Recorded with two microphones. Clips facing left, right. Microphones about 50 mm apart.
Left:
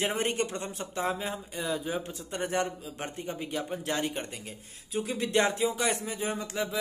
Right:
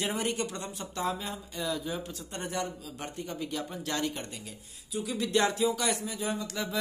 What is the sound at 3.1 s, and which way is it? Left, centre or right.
Speech, left.